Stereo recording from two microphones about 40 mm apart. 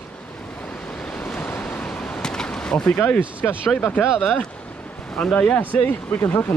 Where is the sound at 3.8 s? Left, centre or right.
Left.